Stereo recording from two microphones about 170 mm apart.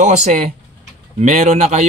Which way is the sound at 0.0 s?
45° right (ahead or behind).